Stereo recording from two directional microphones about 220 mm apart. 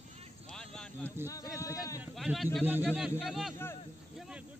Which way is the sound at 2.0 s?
Centre (ahead or behind).